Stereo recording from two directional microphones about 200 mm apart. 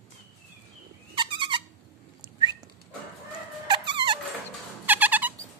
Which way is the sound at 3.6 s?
25° right (ahead or behind).